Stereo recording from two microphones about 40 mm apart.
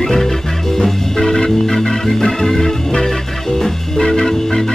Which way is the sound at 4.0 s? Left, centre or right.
Centre.